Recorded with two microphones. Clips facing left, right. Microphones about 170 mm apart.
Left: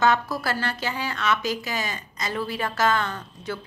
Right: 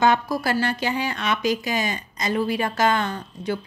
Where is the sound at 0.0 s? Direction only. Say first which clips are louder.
Right 2 dB; 15° right (ahead or behind).